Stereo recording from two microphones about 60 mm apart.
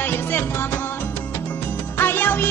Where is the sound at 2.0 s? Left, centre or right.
Left.